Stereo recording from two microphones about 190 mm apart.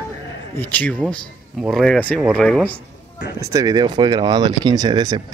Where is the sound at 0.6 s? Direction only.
10° left (ahead or behind).